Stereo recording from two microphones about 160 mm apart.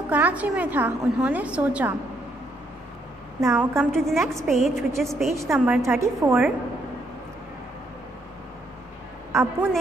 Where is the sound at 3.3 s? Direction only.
15° right (ahead or behind).